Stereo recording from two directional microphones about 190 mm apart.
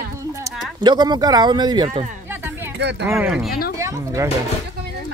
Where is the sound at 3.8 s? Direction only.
15° right (ahead or behind).